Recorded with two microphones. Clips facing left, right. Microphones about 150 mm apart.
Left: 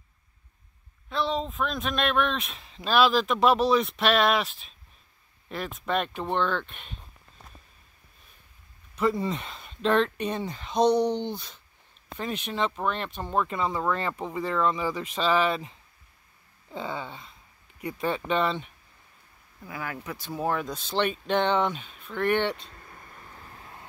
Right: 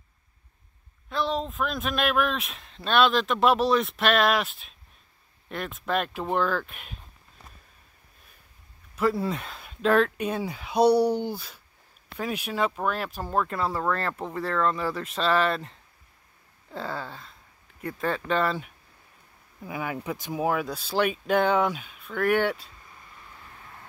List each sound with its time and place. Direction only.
1.0 s speech: centre (ahead or behind)
8.9 s speech: 5° right (ahead or behind)
17.7 s speech: 15° left (ahead or behind)
18.4 s speech: 5° right (ahead or behind)
19.6 s speech: 20° right (ahead or behind)
22.8 s vehicle: 40° left (ahead or behind)